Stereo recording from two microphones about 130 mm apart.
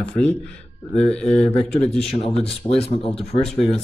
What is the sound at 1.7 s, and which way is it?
Speech, 5° left (ahead or behind).